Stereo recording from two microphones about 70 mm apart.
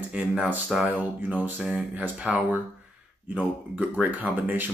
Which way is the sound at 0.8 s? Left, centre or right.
Right.